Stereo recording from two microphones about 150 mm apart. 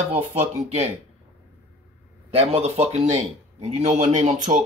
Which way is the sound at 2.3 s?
45° right (ahead or behind).